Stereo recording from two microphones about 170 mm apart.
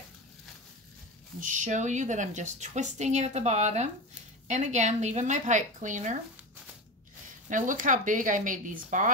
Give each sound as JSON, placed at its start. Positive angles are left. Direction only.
{"t": 1.4, "sound": "a woman's voice", "side_deg": -50}
{"t": 7.4, "sound": "a woman's voice", "side_deg": -50}